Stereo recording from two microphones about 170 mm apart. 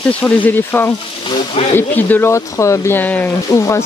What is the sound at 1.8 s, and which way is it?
Speech, 10° left (ahead or behind).